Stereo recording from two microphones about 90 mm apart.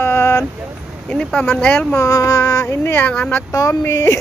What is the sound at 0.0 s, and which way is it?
Vehicle, 25° left (ahead or behind).